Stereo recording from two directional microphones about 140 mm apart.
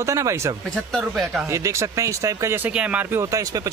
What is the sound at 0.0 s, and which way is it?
Speech, 20° right (ahead or behind).